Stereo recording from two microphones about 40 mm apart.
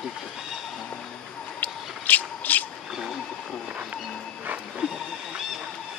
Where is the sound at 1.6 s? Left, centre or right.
Left.